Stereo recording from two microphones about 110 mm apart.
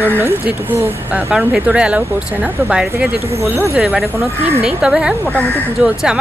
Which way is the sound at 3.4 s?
20° right (ahead or behind).